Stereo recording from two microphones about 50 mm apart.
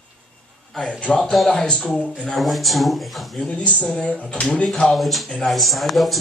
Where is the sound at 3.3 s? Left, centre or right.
Left.